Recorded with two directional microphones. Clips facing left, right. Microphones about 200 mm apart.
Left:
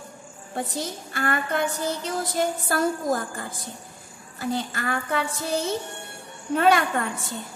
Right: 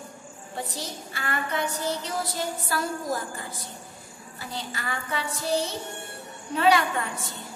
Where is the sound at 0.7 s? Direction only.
50° left (ahead or behind).